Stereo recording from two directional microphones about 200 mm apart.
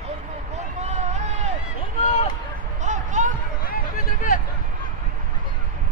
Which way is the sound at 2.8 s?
40° right (ahead or behind).